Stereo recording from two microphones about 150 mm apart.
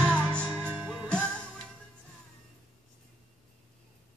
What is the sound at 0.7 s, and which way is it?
Music, 10° right (ahead or behind).